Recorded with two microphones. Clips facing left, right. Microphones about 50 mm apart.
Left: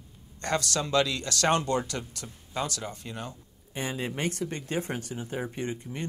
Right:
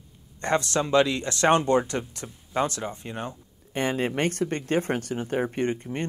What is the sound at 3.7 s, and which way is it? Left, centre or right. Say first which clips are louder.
Speech: right 7 dB; right.